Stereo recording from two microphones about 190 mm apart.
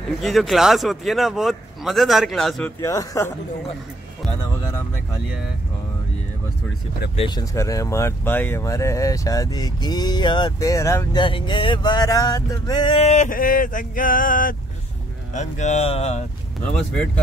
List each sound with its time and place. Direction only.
0.2 s speech: centre (ahead or behind)
2.8 s speech: 15° left (ahead or behind)
7.2 s speech: 20° left (ahead or behind)
11.2 s a sound: 25° left (ahead or behind); by 14.6 s 45° left (ahead or behind)
15.3 s speech: 40° left (ahead or behind)
16.9 s speech: 5° left (ahead or behind)